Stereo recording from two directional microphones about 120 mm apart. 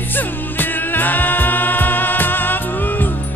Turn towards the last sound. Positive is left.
turn(degrees=15)  # may be behind; listen again after turning